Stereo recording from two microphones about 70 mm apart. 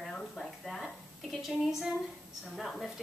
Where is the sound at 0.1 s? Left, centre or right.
Centre.